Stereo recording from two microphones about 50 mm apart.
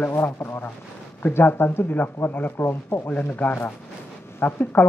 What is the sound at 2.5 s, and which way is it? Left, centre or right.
Speech, left.